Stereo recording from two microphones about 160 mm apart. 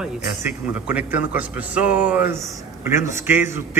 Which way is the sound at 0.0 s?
10° right (ahead or behind).